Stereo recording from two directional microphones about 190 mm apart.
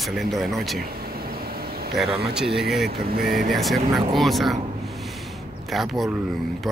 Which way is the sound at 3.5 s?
Centre (ahead or behind).